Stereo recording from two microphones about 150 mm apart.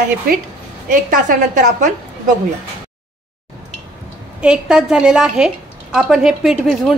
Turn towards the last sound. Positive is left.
turn(degrees=0)  # may be behind; listen again after turning